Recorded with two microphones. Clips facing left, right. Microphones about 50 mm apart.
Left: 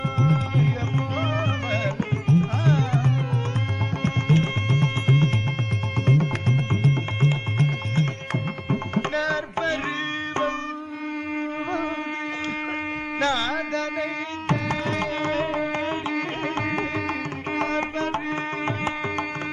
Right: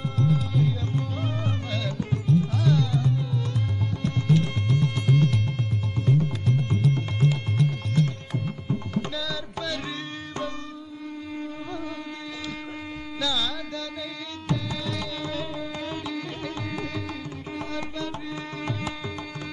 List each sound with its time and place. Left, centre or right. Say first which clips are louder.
0.0 s music: left 2 dB; left
6.0 s music: left 2 dB; left
8.3 s tabla: left 3 dB; left
13.2 s carnatic music: left 5 dB; left
14.5 s music: left 5 dB; left
17.6 s tabla: left 7 dB; left